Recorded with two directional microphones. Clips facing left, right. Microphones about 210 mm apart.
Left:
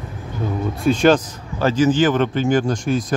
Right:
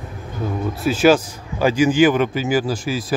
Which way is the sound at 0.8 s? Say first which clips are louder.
Even; 5° right (ahead or behind).